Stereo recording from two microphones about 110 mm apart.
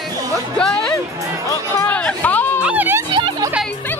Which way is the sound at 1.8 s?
15° left (ahead or behind).